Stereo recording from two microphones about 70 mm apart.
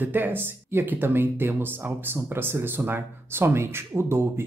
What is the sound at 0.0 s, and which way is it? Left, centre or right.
Speech, right.